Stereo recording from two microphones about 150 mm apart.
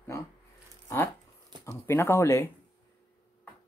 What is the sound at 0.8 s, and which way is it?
Speech, 15° left (ahead or behind).